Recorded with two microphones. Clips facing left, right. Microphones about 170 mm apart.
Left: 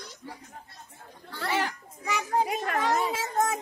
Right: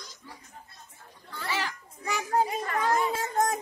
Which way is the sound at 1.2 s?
60° left (ahead or behind).